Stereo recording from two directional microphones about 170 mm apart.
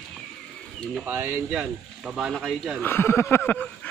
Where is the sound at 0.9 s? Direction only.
10° right (ahead or behind).